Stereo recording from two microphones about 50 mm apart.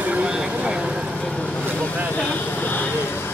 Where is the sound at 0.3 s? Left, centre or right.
Centre.